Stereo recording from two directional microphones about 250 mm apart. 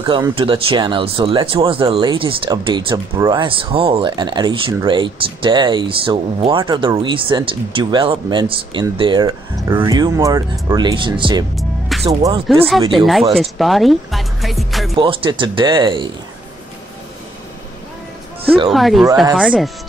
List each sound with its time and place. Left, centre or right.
0.0 s speech: centre
12.9 s speech: centre
15.0 s speech: centre
18.7 s speech: centre